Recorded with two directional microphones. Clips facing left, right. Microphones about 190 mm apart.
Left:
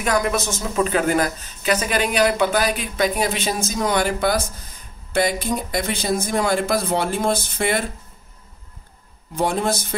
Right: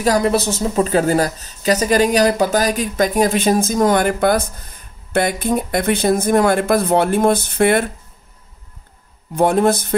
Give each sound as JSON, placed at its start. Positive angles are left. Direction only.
{"t": 0.0, "sound": "speech", "side_deg": -35}
{"t": 9.3, "sound": "speech", "side_deg": -55}